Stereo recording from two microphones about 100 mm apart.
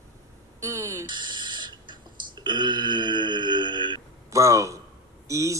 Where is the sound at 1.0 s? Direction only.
50° right (ahead or behind).